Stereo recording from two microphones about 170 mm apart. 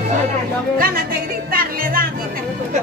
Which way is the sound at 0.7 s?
55° right (ahead or behind).